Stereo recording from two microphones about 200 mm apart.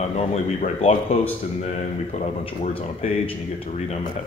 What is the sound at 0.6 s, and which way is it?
Speech, 30° left (ahead or behind).